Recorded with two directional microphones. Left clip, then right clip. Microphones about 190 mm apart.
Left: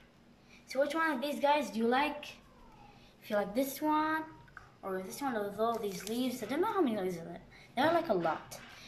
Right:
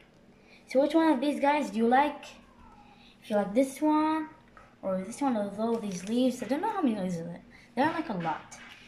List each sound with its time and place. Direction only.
0.7 s a woman's voice: 20° right (ahead or behind)
3.3 s a woman's voice: 15° right (ahead or behind)